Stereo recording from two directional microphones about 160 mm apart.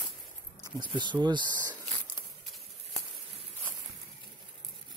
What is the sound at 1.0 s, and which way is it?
Speech, 30° right (ahead or behind).